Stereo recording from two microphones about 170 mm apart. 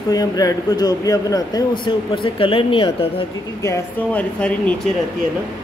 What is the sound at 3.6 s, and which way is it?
Speech, 15° left (ahead or behind).